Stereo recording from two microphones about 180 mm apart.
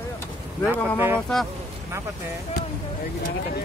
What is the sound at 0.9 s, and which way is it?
Speech, 10° right (ahead or behind).